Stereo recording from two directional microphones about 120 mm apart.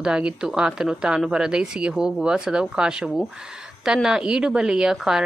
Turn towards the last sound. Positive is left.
turn(degrees=-5)  # may be behind; listen again after turning